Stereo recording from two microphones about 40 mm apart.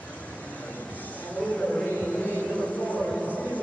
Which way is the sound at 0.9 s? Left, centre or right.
Left.